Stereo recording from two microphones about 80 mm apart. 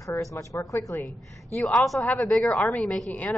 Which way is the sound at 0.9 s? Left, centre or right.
Left.